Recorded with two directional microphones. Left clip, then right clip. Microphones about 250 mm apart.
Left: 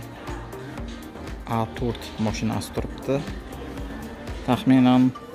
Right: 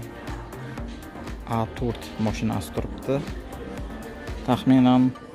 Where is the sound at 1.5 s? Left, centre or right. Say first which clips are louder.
Left 1 dB; centre.